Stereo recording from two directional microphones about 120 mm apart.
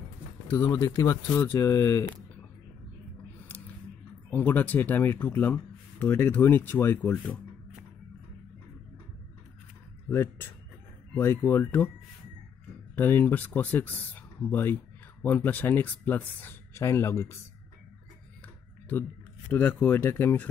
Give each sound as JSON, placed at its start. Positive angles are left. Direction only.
{"t": 0.5, "sound": "speech", "side_deg": 20}
{"t": 4.3, "sound": "speech", "side_deg": 15}
{"t": 10.0, "sound": "speech", "side_deg": 20}
{"t": 12.9, "sound": "speech", "side_deg": 15}
{"t": 19.5, "sound": "speech", "side_deg": 15}